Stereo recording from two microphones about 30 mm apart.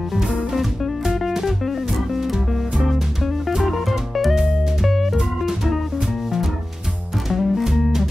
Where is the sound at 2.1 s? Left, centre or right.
Centre.